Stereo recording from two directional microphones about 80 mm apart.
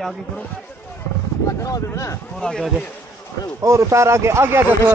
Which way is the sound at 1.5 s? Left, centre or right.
Left.